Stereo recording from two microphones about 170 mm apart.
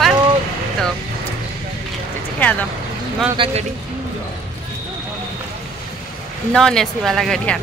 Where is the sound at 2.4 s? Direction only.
10° left (ahead or behind).